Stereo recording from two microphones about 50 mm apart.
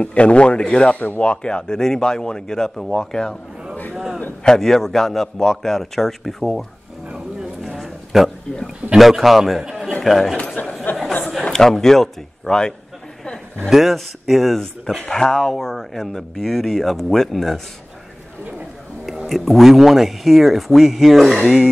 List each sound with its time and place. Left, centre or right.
0.0 s a man's voice: left
0.9 s speech: left; by 3.3 s centre
3.9 s a sound: centre
4.4 s speech: centre
7.6 s a sound: centre
8.9 s speech: centre
10.3 s a man's voice: left
11.2 s a man's voice: centre
13.7 s speech: centre
19.2 s speech: centre